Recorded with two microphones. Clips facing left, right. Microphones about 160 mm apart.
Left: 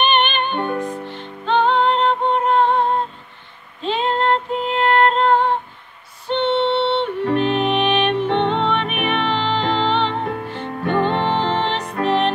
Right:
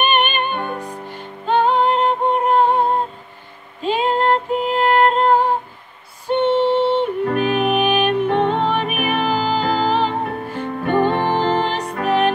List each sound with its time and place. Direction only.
0.0 s music: 5° right (ahead or behind)
3.8 s female singing: 10° right (ahead or behind)
6.2 s music: 10° right (ahead or behind)
8.3 s music: 40° right (ahead or behind)
8.6 s music: 5° right (ahead or behind)